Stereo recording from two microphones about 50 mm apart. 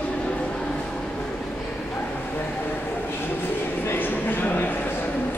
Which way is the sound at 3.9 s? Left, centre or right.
Left.